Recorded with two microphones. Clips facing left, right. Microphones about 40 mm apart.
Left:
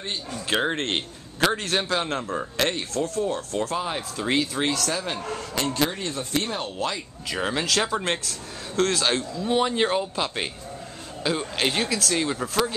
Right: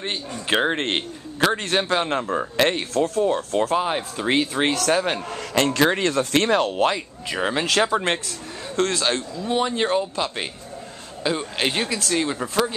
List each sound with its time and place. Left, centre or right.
0.5 s a man's voice: centre
4.6 s speech: right
5.5 s speech: right
6.7 s speech: right
7.2 s a man's voice: centre